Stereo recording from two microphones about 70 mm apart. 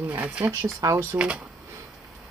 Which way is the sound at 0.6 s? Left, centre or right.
Right.